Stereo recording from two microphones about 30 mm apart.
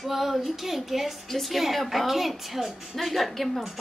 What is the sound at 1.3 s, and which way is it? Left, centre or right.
Speech, centre.